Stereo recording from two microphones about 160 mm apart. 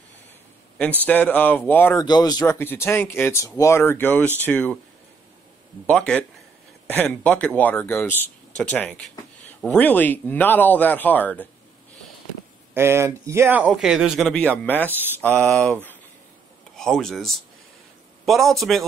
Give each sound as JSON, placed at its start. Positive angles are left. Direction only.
{"t": 0.7, "sound": "speech", "side_deg": 10}
{"t": 2.0, "sound": "speech", "side_deg": 25}
{"t": 5.9, "sound": "speech", "side_deg": 5}
{"t": 12.7, "sound": "speech", "side_deg": -15}
{"t": 13.7, "sound": "a man's voice", "side_deg": 0}